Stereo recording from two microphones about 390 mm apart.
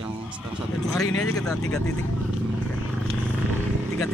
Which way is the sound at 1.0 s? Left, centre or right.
Left.